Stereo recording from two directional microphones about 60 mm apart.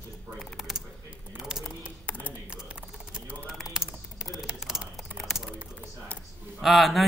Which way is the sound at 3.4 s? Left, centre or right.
Centre.